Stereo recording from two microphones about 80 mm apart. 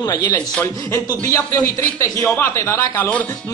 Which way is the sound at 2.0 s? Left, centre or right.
Left.